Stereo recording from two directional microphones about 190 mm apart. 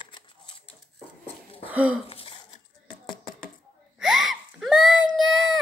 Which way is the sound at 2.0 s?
30° left (ahead or behind).